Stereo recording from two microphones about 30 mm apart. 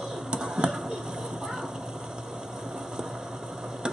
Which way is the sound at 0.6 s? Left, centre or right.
Right.